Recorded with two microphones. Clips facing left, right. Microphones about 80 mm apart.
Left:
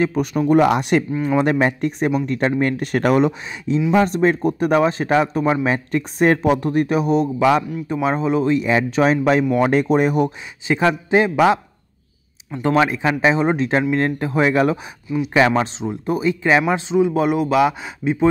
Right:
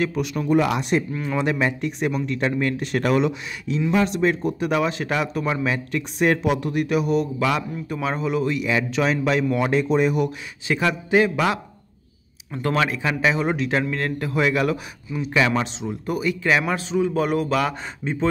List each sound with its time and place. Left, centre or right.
0.0 s speech: left
1.4 s a man's voice: left
10.7 s speech: left
12.6 s a man's voice: centre; by 14.8 s left
15.0 s a man's voice: centre
15.3 s a man's voice: left; by 18.1 s centre